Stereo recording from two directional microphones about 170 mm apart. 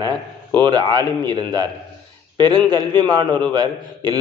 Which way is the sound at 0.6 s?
25° right (ahead or behind).